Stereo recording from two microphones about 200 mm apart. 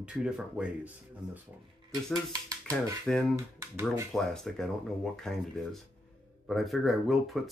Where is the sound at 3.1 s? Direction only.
5° left (ahead or behind).